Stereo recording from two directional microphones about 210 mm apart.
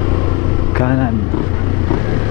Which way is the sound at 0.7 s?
15° left (ahead or behind).